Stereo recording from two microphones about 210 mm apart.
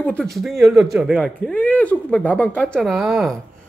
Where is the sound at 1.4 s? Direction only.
5° left (ahead or behind).